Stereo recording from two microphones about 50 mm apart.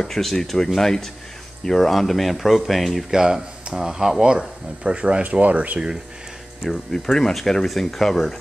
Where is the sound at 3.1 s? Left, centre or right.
Centre.